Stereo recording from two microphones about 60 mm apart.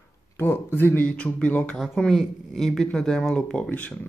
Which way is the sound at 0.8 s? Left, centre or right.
Left.